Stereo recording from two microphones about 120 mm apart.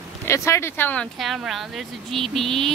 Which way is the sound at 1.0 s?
Centre (ahead or behind).